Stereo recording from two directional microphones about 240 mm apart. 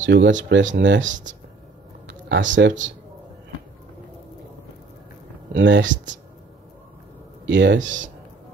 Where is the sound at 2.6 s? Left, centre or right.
Right.